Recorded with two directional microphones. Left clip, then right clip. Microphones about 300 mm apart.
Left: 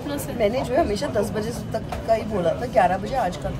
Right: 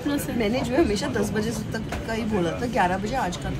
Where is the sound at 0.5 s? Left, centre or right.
Centre.